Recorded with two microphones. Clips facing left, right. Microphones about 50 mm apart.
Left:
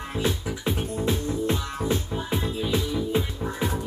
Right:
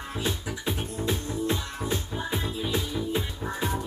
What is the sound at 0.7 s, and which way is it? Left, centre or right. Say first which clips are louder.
Music: left 3 dB; left.